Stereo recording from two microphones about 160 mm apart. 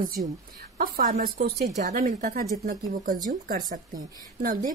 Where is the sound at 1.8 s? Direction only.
50° right (ahead or behind).